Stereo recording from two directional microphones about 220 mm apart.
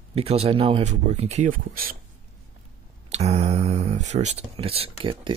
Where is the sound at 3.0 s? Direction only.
30° right (ahead or behind).